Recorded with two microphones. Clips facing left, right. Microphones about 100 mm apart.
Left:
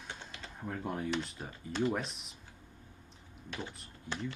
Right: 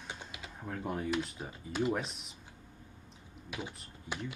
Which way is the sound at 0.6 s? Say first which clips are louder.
Even; centre (ahead or behind).